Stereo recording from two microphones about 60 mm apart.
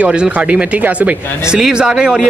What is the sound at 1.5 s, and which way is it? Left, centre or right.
Speech, centre.